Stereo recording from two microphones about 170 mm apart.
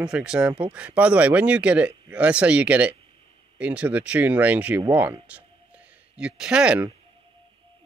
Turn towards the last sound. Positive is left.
turn(degrees=-5)  # may be behind; listen again after turning